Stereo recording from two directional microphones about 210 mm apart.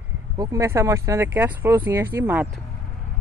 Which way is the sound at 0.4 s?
15° right (ahead or behind).